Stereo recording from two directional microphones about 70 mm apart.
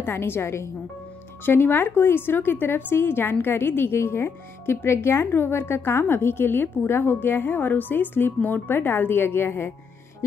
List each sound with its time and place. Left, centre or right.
0.0 s a woman's voice: left